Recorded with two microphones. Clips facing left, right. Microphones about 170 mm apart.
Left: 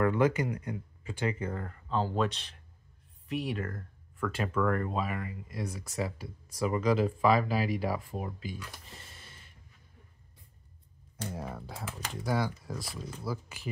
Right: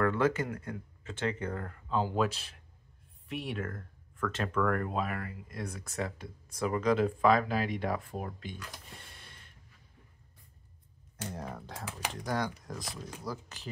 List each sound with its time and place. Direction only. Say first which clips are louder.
0.0 s speech: left 2 dB; 15° left (ahead or behind)
11.3 s speech: left 1 dB; 5° left (ahead or behind)